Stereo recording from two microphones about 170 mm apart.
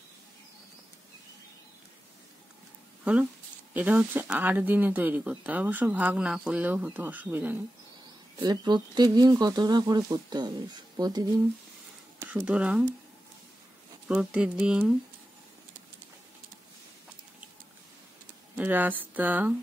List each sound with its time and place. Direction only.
3.0 s a sound: 5° right (ahead or behind)
3.7 s speech: 10° right (ahead or behind)
8.4 s speech: 25° right (ahead or behind)
12.2 s speech: 10° right (ahead or behind)
14.0 s speech: 5° right (ahead or behind)
18.6 s speech: 10° right (ahead or behind)